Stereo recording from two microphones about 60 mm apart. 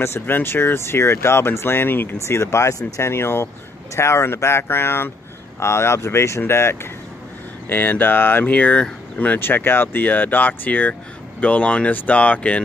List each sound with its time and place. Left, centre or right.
0.0 s speech: left
2.2 s speech: left
7.6 s speech: left
9.4 s speech: left